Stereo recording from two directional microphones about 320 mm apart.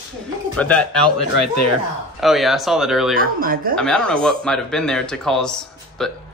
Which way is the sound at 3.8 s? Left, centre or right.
Centre.